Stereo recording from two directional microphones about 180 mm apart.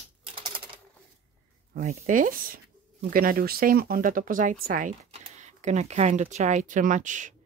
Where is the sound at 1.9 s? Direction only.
45° right (ahead or behind).